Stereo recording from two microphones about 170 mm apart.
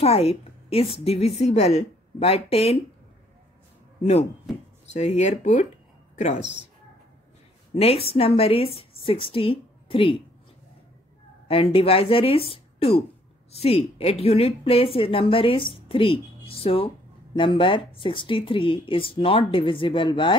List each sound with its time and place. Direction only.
0.0 s speech: 35° left (ahead or behind)
4.0 s speech: 40° left (ahead or behind)
7.7 s speech: 35° left (ahead or behind)
11.4 s speech: 35° left (ahead or behind)